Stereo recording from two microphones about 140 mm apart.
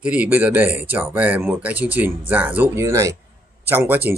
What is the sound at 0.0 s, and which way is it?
Speech, 10° right (ahead or behind).